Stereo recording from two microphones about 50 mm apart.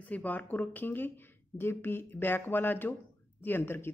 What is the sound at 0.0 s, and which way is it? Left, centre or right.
Speech, left.